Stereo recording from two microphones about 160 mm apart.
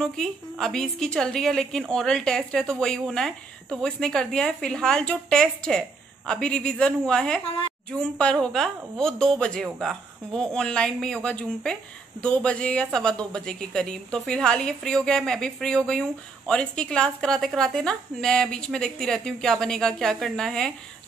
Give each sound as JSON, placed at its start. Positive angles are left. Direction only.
{"t": 0.0, "sound": "speech", "side_deg": 0}